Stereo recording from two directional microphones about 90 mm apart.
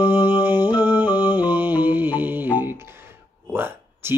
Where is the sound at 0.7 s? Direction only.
20° right (ahead or behind).